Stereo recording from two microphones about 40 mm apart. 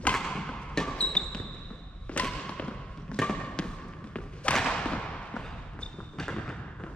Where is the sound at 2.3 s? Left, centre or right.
Left.